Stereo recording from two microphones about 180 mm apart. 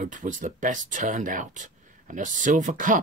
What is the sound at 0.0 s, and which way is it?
Speech, 45° right (ahead or behind).